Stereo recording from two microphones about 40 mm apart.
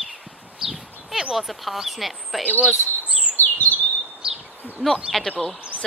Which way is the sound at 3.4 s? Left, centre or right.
Left.